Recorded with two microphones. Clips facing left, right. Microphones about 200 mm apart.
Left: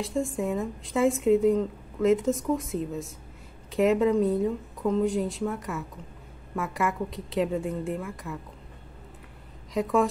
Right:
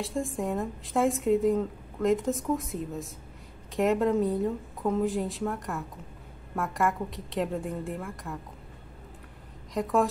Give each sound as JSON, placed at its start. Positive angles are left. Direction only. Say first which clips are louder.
{"t": 0.0, "sound": "a woman's voice", "louder": "left 2 dB", "side_deg": 0}